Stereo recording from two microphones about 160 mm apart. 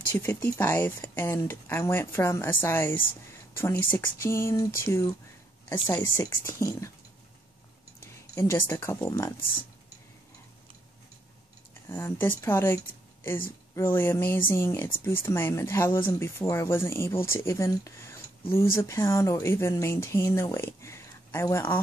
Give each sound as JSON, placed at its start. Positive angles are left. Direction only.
{"t": 0.1, "sound": "speech", "side_deg": 15}
{"t": 8.4, "sound": "speech", "side_deg": 15}
{"t": 11.9, "sound": "speech", "side_deg": 15}